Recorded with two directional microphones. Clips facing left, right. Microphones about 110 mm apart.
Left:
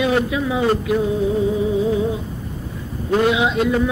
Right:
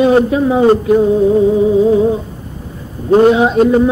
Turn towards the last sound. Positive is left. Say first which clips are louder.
# right 8 dB
turn(degrees=-35)  # may be behind; listen again after turning